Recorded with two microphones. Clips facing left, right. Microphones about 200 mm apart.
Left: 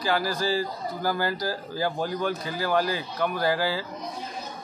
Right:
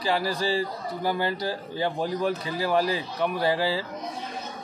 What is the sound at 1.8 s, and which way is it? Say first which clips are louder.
Speech: right 1 dB; centre (ahead or behind).